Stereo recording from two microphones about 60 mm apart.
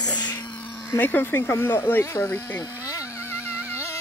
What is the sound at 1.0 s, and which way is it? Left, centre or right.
Speech, left.